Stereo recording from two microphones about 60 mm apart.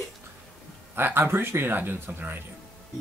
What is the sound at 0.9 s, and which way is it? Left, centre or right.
Speech, right.